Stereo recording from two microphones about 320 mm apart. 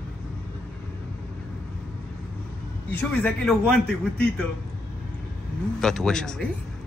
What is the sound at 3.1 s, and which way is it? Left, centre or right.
Speech, centre.